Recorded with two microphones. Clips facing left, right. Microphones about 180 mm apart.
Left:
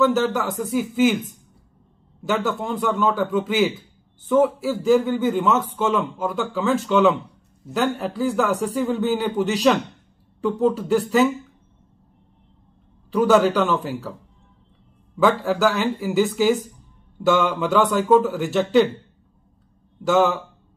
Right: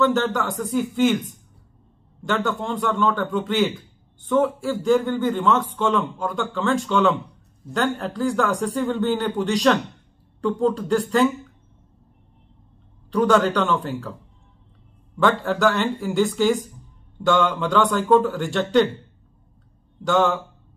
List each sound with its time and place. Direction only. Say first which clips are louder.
0.0 s a man's voice: left 1 dB; 5° left (ahead or behind)
2.2 s a man's voice: left 1 dB; 5° left (ahead or behind)
13.1 s a man's voice: left 2 dB; 5° left (ahead or behind)
15.1 s a man's voice: left 2 dB; 5° left (ahead or behind)
20.0 s speech: left 2 dB; 5° left (ahead or behind)